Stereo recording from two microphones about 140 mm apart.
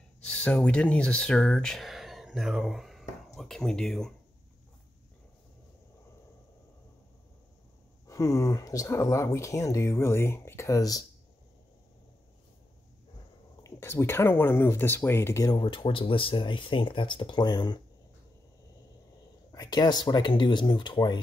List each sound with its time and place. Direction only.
0.2 s speech: 5° left (ahead or behind)
8.1 s speech: 20° left (ahead or behind)
13.6 s speech: 20° left (ahead or behind)
19.5 s speech: 30° left (ahead or behind)